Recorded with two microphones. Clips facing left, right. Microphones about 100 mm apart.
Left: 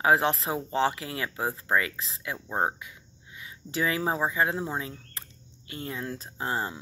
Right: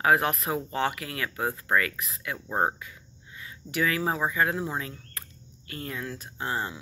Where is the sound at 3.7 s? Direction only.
25° left (ahead or behind).